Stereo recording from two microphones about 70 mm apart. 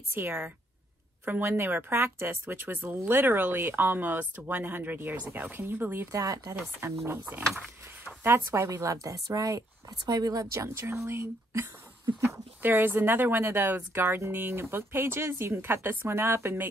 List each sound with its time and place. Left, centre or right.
0.1 s speech: right
6.1 s speech: right
6.5 s speech: right
12.6 s speech: right